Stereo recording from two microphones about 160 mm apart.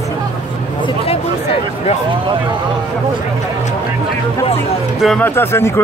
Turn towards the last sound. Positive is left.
turn(degrees=15)  # may be behind; listen again after turning